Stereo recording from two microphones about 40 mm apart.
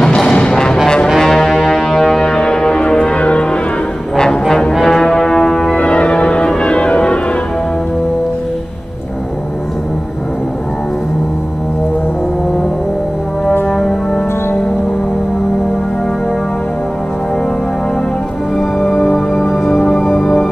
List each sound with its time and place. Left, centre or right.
0.0 s music: centre
1.2 s brass instrument: centre
1.6 s music: centre; by 3.4 s left
4.2 s music: centre
4.8 s brass instrument: centre
5.1 s brass instrument: centre
5.9 s music: left
13.7 s brass instrument: centre
18.6 s music: centre